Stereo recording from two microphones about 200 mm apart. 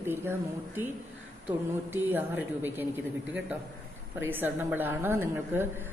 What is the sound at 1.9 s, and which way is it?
Speech, 10° right (ahead or behind).